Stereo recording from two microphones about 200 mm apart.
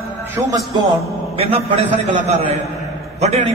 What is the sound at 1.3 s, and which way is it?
A man's voice, 30° right (ahead or behind).